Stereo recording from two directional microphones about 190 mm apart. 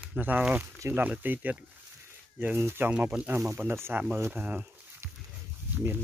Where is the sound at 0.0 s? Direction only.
10° right (ahead or behind).